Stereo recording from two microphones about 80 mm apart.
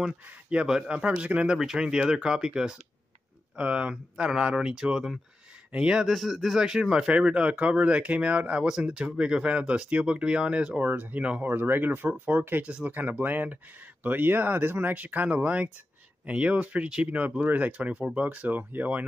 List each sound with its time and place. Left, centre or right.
0.0 s speech: centre
11.4 s speech: right